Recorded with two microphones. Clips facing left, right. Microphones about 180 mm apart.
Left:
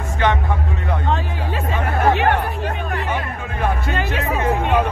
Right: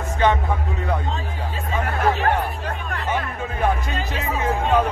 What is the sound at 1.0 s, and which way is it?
Speech, 65° left (ahead or behind).